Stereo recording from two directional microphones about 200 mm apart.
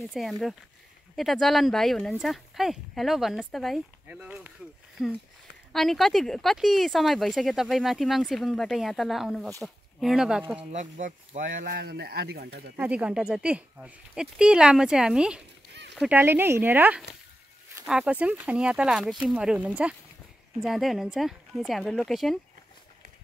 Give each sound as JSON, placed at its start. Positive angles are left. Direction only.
{"t": 0.1, "sound": "speech", "side_deg": 0}
{"t": 10.6, "sound": "speech", "side_deg": -35}
{"t": 12.7, "sound": "speech", "side_deg": -5}